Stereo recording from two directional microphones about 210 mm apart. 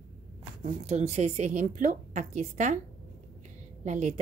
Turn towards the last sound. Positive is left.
turn(degrees=-35)  # may be behind; listen again after turning